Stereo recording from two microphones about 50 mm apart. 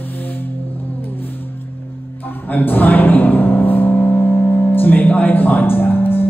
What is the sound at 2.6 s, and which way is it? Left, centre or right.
Music, left.